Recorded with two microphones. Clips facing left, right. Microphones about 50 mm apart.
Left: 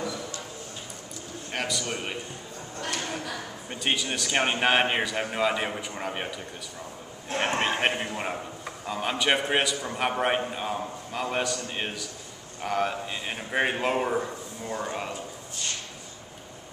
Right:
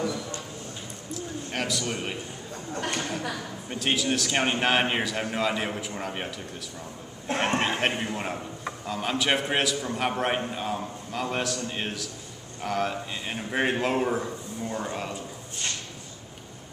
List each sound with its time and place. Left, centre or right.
1.5 s a man's voice: centre
2.7 s speech: right
3.6 s a man's voice: centre
7.5 s a man's voice: centre